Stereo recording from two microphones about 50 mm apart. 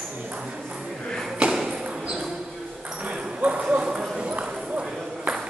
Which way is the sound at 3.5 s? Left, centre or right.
Centre.